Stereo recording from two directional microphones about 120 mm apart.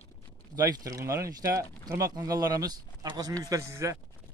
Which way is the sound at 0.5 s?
30° right (ahead or behind).